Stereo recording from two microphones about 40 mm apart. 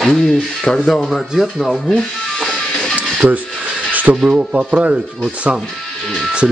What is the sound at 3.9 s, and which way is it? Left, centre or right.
Mechanisms, right.